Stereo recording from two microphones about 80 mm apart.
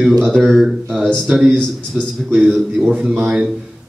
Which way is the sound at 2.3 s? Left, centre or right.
Centre.